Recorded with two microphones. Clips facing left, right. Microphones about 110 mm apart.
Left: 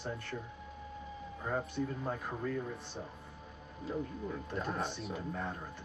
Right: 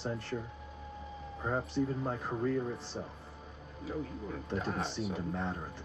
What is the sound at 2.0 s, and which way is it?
Speech, 30° right (ahead or behind).